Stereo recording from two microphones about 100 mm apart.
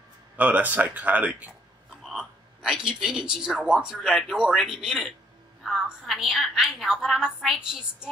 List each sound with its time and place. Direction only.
0.4 s speech: 15° right (ahead or behind)
2.0 s a woman's voice: 5° right (ahead or behind)